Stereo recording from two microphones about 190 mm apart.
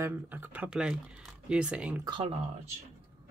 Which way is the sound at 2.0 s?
25° right (ahead or behind).